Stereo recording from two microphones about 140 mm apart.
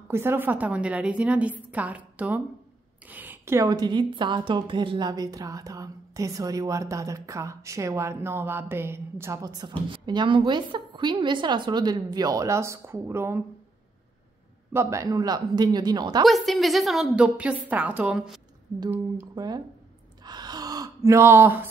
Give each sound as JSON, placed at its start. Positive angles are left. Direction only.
{"t": 0.1, "sound": "a woman's voice", "side_deg": -15}
{"t": 14.7, "sound": "a woman's voice", "side_deg": -20}
{"t": 16.3, "sound": "a woman's voice", "side_deg": 0}
{"t": 19.3, "sound": "speech", "side_deg": -30}
{"t": 20.2, "sound": "gasp", "side_deg": -30}